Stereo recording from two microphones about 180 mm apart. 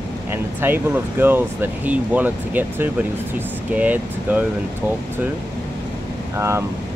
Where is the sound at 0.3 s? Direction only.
10° right (ahead or behind).